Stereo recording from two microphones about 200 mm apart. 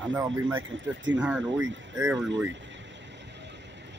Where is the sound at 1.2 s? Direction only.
5° right (ahead or behind).